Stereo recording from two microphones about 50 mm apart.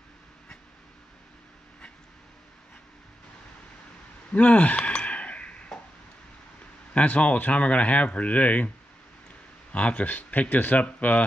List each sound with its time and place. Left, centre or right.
4.3 s a sound: left
6.9 s speech: left
9.7 s speech: left